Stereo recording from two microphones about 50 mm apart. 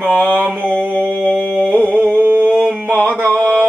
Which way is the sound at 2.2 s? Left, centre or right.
Right.